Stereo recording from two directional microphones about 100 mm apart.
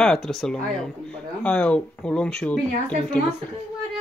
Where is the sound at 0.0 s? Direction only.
5° left (ahead or behind).